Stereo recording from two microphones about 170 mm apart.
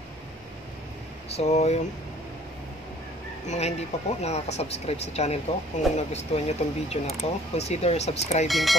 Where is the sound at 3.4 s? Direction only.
40° left (ahead or behind).